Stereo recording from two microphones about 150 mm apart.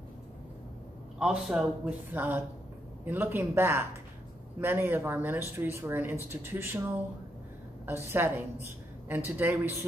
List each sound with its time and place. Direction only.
1.2 s a woman's voice: 5° right (ahead or behind)
8.1 s a woman's voice: 15° right (ahead or behind)